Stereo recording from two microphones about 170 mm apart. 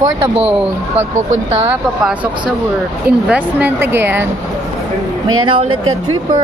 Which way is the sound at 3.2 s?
10° right (ahead or behind).